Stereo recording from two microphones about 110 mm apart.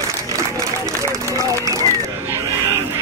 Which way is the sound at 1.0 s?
30° right (ahead or behind).